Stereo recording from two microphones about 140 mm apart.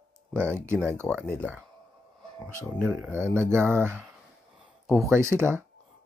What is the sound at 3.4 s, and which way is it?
Speech, 15° right (ahead or behind).